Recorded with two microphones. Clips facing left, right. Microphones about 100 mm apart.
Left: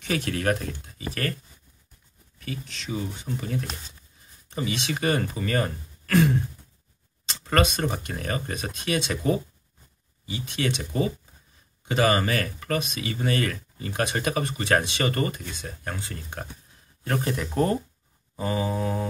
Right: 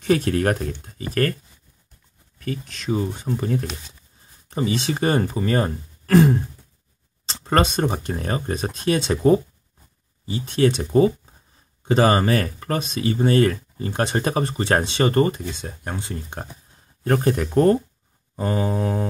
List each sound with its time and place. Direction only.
0.0 s speech: 35° right (ahead or behind)
2.4 s speech: 45° right (ahead or behind); by 16.4 s 20° right (ahead or behind)
17.0 s speech: 40° right (ahead or behind)